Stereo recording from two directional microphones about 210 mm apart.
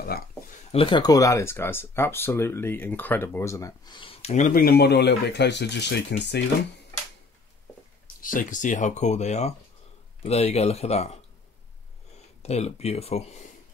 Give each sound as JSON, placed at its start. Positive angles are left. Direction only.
{"t": 0.7, "sound": "speech", "side_deg": 25}
{"t": 8.2, "sound": "speech", "side_deg": 40}
{"t": 12.4, "sound": "speech", "side_deg": 30}